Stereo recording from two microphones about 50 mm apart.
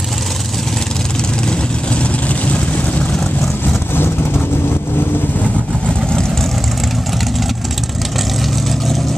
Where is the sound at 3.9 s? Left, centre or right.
Left.